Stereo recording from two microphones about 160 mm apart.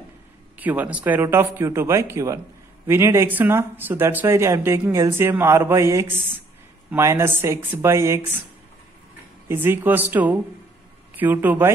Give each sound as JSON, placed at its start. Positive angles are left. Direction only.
{"t": 0.6, "sound": "speech", "side_deg": -10}
{"t": 9.5, "sound": "speech", "side_deg": -15}